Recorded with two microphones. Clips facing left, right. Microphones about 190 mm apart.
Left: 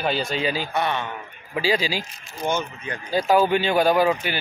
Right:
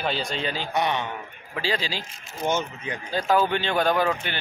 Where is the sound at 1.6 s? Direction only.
10° left (ahead or behind).